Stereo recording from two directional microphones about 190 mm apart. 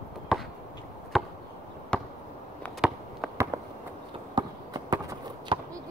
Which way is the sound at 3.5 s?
15° right (ahead or behind).